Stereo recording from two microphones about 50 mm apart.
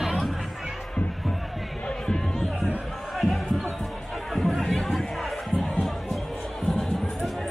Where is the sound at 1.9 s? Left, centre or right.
Centre.